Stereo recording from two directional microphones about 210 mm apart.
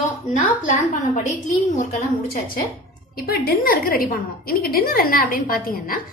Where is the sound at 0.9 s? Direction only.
35° left (ahead or behind).